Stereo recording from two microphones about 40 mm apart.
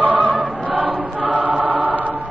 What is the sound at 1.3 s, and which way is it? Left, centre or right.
Choir, right.